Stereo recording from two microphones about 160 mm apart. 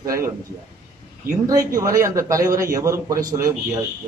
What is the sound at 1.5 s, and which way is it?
A man's voice, 20° right (ahead or behind).